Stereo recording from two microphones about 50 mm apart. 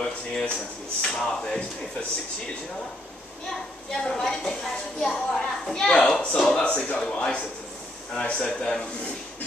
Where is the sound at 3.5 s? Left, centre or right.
Centre.